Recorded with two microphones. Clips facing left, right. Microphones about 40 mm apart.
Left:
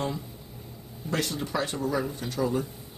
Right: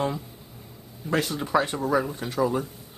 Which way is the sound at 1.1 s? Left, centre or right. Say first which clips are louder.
Right 6 dB; centre.